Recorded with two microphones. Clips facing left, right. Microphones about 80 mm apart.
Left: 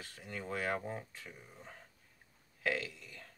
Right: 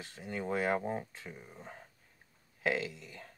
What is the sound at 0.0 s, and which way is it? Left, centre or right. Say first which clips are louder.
Speech: right 6 dB; right.